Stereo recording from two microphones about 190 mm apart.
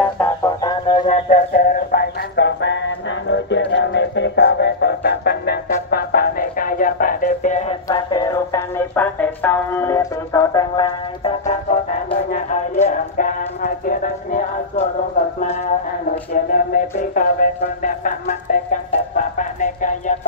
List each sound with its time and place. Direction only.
0.0 s music: 5° left (ahead or behind)
0.6 s a sound: 25° left (ahead or behind)
1.0 s music: 40° left (ahead or behind)
7.9 s music: 20° left (ahead or behind)
11.4 s music: 40° left (ahead or behind)
16.5 s music: 45° left (ahead or behind)
19.1 s a sound: 45° left (ahead or behind)